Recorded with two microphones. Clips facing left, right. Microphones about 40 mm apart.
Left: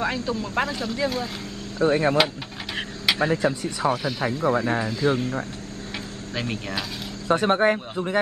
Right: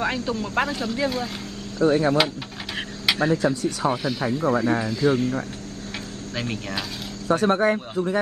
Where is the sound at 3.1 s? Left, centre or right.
Centre.